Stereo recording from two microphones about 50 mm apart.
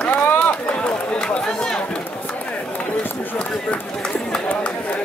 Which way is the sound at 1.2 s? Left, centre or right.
Centre.